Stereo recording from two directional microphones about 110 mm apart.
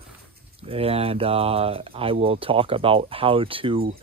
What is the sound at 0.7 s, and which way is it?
Speech, 65° right (ahead or behind).